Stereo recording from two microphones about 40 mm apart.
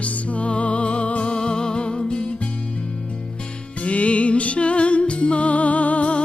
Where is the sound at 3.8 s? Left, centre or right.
Left.